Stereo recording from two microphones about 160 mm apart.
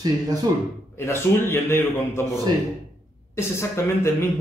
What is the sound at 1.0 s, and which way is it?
A man's voice, 15° left (ahead or behind).